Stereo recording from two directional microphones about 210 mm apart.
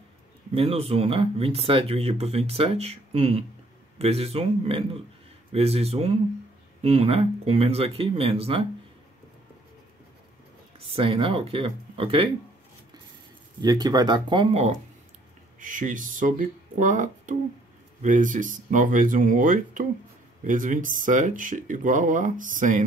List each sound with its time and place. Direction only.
0.6 s speech: 30° right (ahead or behind)
10.9 s speech: 25° right (ahead or behind)
13.6 s speech: 20° right (ahead or behind); by 22.8 s 35° right (ahead or behind)